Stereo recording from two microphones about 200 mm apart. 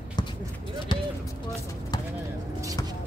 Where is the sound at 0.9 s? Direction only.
25° left (ahead or behind).